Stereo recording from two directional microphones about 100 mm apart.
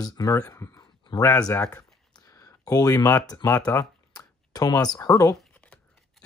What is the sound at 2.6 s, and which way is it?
Speech, 40° left (ahead or behind).